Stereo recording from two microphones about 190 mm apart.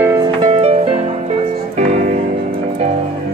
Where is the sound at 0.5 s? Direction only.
30° right (ahead or behind).